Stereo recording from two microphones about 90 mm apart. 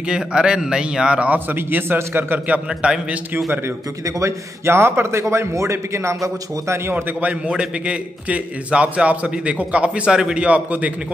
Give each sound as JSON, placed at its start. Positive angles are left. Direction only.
{"t": 0.1, "sound": "a man's voice", "side_deg": -10}
{"t": 4.2, "sound": "a man's voice", "side_deg": -30}
{"t": 7.2, "sound": "a man's voice", "side_deg": -15}